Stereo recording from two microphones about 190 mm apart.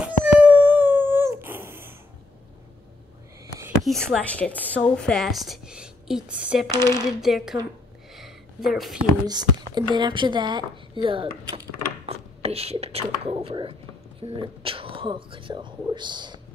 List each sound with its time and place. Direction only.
0.0 s dog: 5° right (ahead or behind)
3.8 s a woman's voice: centre (ahead or behind)
8.1 s a sound: centre (ahead or behind)
9.3 s speech: 20° right (ahead or behind)